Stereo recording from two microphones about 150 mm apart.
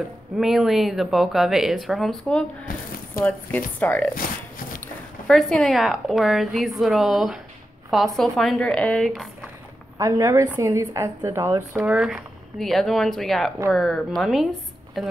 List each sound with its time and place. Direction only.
0.4 s a woman's voice: centre (ahead or behind)
2.7 s speech: 65° left (ahead or behind)
3.8 s speech: 10° left (ahead or behind)
4.1 s walk: 70° left (ahead or behind)
5.2 s a woman's voice: 5° left (ahead or behind)
9.9 s speech: 20° right (ahead or behind)
11.8 s a woman's voice: 5° right (ahead or behind)